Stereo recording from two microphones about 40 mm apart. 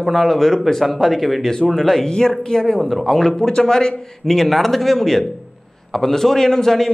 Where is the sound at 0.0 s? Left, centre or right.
Centre.